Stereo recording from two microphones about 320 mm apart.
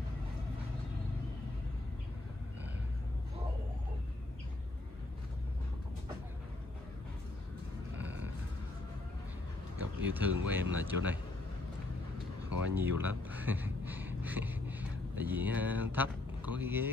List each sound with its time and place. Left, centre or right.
8.0 s a sound: centre
9.8 s speech: centre
12.7 s speech: centre